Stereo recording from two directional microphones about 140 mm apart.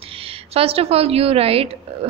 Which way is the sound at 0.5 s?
45° right (ahead or behind).